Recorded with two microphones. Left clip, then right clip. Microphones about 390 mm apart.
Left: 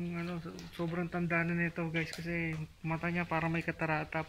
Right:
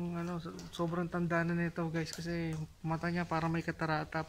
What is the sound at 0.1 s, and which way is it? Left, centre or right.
Speech, centre.